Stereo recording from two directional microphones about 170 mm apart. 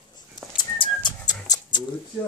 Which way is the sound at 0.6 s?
25° left (ahead or behind).